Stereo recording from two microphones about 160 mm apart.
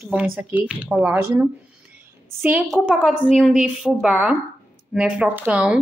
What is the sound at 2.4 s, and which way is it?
Speech, 5° right (ahead or behind).